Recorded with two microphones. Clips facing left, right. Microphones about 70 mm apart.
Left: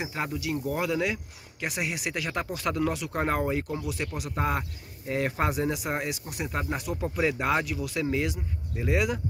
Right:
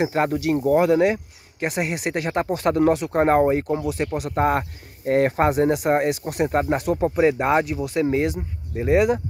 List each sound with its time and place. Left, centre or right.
0.0 s speech: right
7.2 s speech: right